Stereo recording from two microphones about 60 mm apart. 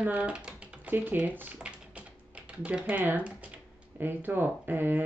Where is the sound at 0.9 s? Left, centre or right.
Right.